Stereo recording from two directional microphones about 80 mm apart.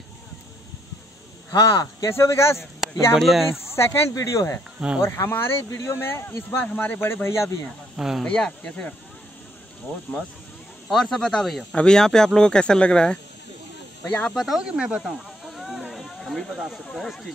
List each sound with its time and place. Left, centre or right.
1.5 s speech: left
2.0 s a man's voice: left
3.2 s speech: centre
3.7 s a man's voice: left
4.7 s speech: centre
5.0 s a man's voice: left
6.6 s a man's voice: centre; by 7.6 s left
7.9 s speech: centre
8.2 s speech: centre
10.9 s speech: centre
14.3 s speech: centre
14.6 s speech: centre
15.0 s a sound: centre
16.9 s speech: centre